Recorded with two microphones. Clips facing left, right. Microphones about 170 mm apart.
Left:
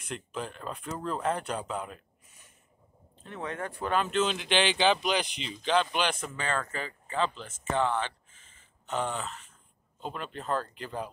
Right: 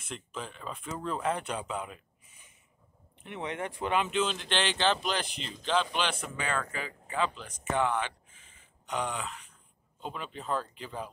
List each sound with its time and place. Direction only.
0.0 s speech: centre (ahead or behind)
3.2 s speech: 20° right (ahead or behind)
4.3 s speech: 5° left (ahead or behind)
6.1 s speech: 10° right (ahead or behind)
7.3 s speech: 5° left (ahead or behind)
8.9 s speech: centre (ahead or behind)